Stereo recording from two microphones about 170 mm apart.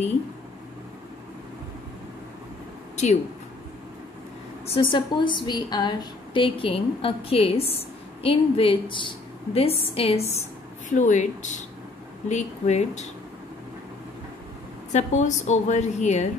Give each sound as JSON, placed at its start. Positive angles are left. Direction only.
{"t": 4.6, "sound": "a woman's voice", "side_deg": 30}
{"t": 14.9, "sound": "a woman's voice", "side_deg": 45}